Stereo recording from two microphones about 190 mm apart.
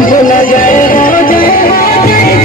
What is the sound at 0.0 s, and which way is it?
Music, 45° left (ahead or behind).